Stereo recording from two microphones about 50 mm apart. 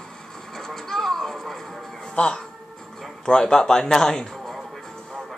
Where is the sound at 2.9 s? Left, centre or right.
Centre.